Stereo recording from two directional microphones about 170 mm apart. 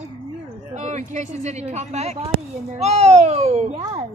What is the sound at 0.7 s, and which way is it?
Speech, 45° right (ahead or behind).